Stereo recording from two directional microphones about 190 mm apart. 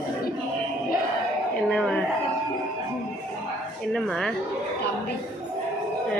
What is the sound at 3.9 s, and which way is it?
Dog, centre (ahead or behind).